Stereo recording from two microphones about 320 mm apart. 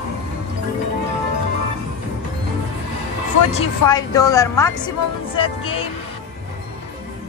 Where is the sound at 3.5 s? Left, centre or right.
Centre.